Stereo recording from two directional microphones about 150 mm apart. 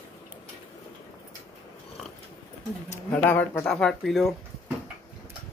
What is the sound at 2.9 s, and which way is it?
Speech, 10° left (ahead or behind).